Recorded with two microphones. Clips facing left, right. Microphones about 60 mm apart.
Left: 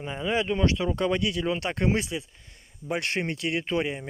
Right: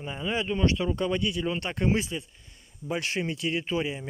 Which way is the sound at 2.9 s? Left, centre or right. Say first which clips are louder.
Left 1 dB; left.